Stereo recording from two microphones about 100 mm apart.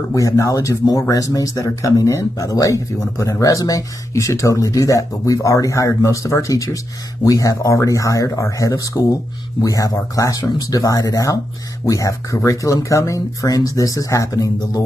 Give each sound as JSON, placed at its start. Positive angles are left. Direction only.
{"t": 0.1, "sound": "speech", "side_deg": 35}